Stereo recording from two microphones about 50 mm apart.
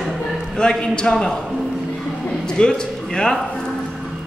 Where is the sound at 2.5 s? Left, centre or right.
Centre.